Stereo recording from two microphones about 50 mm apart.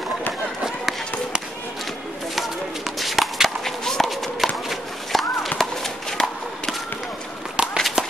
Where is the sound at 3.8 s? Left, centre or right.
Centre.